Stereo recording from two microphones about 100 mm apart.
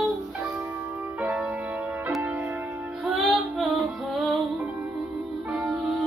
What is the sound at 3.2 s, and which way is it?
Music, centre (ahead or behind).